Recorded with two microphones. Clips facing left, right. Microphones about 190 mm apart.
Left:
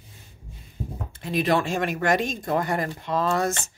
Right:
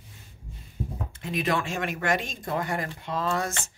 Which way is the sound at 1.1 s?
35° left (ahead or behind).